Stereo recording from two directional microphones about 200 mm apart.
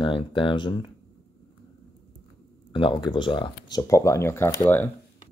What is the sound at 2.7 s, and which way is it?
Speech, 25° left (ahead or behind).